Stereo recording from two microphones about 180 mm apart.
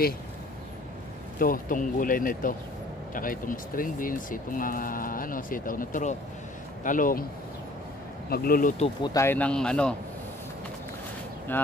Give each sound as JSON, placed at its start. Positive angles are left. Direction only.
{"t": 1.4, "sound": "speech", "side_deg": 50}
{"t": 8.3, "sound": "speech", "side_deg": 55}
{"t": 9.0, "sound": "speech", "side_deg": 15}
{"t": 11.5, "sound": "speech", "side_deg": 10}